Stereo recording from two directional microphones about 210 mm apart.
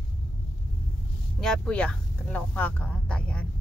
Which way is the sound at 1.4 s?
5° left (ahead or behind).